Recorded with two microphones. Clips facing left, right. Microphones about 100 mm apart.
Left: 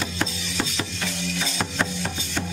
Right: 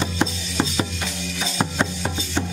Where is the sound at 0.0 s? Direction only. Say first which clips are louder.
Right 4 dB; 25° right (ahead or behind).